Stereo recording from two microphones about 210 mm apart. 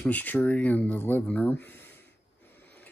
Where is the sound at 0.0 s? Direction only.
10° left (ahead or behind).